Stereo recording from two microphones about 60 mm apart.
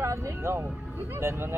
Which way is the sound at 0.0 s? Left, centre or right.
Right.